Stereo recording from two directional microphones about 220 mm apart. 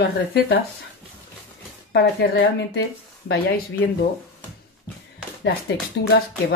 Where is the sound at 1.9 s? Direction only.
50° left (ahead or behind).